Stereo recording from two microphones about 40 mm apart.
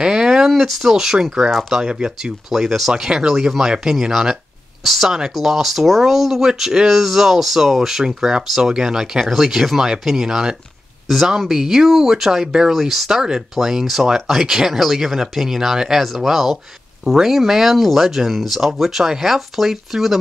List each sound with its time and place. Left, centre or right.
0.0 s a sound: centre
0.5 s speech: centre; by 2.1 s right
2.5 s speech: centre
4.8 s speech: centre